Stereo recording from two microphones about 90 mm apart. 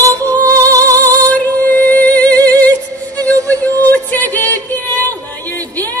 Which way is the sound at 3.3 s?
35° right (ahead or behind).